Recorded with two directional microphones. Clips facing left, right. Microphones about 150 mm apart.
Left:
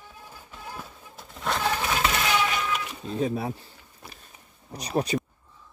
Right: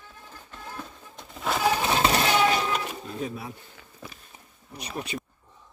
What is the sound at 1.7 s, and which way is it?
Music, 25° right (ahead or behind).